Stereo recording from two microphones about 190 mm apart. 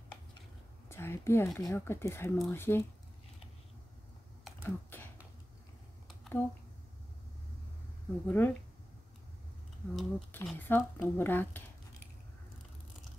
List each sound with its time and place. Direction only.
0.8 s a sound: 15° left (ahead or behind)
1.6 s speech: 15° left (ahead or behind)
4.6 s typing: 10° left (ahead or behind)
8.3 s speech: 10° left (ahead or behind)
9.9 s speech: 5° left (ahead or behind)